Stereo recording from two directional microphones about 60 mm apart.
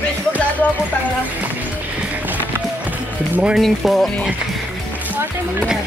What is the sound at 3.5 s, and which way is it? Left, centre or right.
Speech, centre.